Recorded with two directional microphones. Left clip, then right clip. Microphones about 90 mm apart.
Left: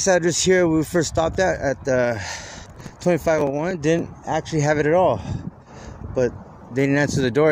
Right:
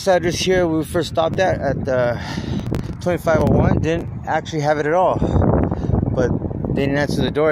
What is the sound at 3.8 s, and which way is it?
Speech, 75° left (ahead or behind).